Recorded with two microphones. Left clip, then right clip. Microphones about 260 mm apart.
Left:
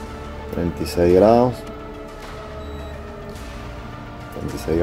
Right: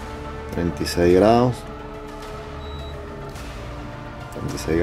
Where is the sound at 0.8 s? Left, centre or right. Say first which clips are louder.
Left 2 dB; centre.